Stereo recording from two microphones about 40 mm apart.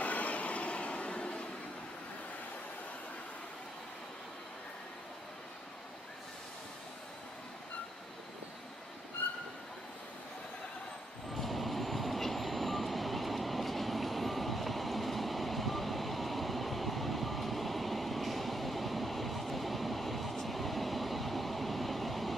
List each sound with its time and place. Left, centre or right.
0.0 s train: left
11.3 s train: centre